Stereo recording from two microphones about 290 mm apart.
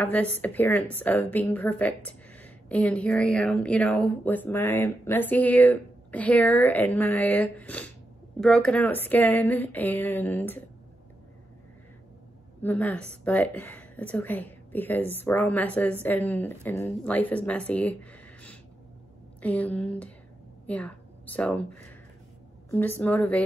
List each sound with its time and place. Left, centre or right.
0.0 s a woman's voice: centre
12.6 s a woman's voice: centre